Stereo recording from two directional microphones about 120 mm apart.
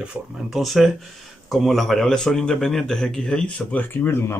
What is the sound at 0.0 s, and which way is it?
Speech, 5° right (ahead or behind).